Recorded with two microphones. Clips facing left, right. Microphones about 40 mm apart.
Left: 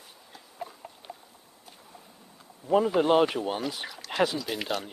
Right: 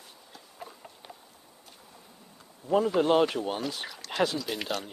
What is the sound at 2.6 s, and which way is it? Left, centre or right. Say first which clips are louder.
Speech: left 1 dB; centre.